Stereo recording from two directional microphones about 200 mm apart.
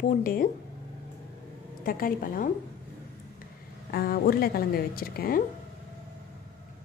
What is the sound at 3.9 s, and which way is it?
Speech, 50° left (ahead or behind).